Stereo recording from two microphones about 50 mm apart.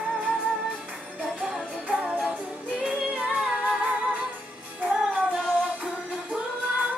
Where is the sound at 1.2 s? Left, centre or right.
Centre.